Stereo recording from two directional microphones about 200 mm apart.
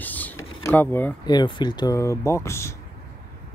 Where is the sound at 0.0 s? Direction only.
10° left (ahead or behind).